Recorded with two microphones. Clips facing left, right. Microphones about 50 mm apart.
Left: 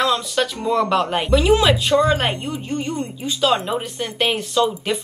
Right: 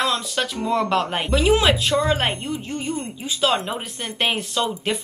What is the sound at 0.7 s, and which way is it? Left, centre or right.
Speech, centre.